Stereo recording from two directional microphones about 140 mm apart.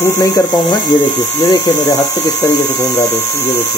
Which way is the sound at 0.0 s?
25° left (ahead or behind).